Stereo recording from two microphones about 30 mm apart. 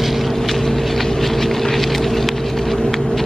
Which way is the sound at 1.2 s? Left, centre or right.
Centre.